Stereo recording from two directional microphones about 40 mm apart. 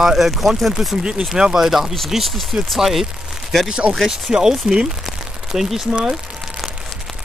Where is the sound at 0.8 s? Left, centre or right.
Centre.